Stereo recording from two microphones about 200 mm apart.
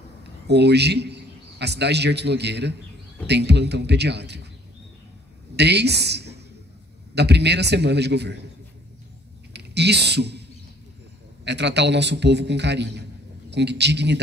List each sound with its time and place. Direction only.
0.5 s a man's voice: 55° right (ahead or behind)
5.6 s a woman's voice: 55° right (ahead or behind)
9.5 s speech: 55° right (ahead or behind)
11.4 s a man's voice: 60° right (ahead or behind)